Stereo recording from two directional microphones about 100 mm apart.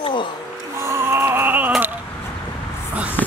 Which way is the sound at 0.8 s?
25° right (ahead or behind).